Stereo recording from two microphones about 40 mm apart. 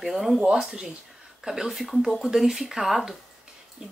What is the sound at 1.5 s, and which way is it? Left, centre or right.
Speech, centre.